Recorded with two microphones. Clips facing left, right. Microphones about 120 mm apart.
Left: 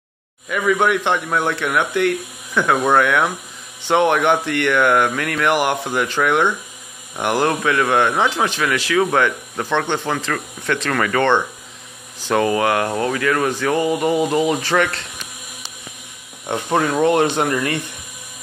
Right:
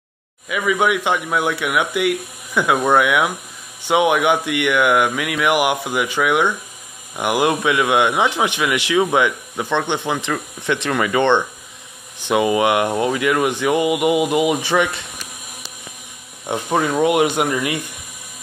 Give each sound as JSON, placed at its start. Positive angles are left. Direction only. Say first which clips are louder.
{"t": 0.5, "sound": "speech", "louder": "left 1 dB", "side_deg": -5}
{"t": 16.4, "sound": "speech", "louder": "even", "side_deg": -5}